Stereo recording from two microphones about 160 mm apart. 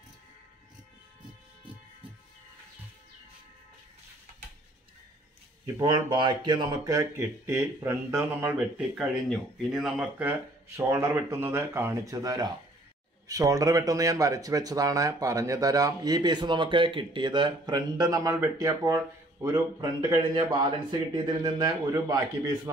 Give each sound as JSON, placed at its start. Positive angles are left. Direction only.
{"t": 5.8, "sound": "speech", "side_deg": -30}